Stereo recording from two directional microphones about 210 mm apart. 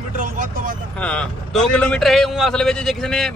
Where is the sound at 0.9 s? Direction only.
5° left (ahead or behind).